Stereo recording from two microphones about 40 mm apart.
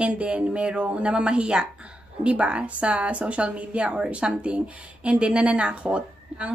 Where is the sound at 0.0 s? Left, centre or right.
Right.